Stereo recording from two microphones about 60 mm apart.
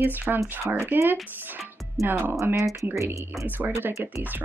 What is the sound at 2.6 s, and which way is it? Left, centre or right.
Speech, right.